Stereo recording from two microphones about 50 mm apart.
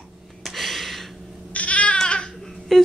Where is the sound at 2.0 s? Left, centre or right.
Centre.